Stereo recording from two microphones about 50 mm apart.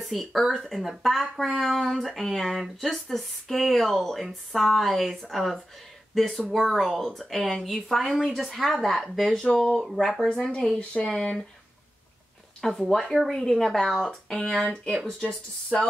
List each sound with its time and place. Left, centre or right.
0.0 s speech: centre
9.3 s speech: centre
12.6 s speech: centre
14.4 s speech: centre
15.7 s speech: centre